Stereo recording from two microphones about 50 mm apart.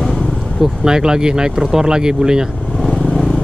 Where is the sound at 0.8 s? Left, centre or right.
Centre.